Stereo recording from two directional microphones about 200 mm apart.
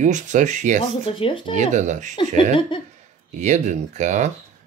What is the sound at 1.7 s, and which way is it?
Speech, 35° right (ahead or behind).